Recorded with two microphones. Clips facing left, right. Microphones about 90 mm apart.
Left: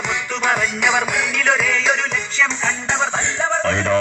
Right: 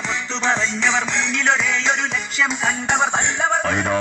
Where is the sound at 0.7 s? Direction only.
10° left (ahead or behind).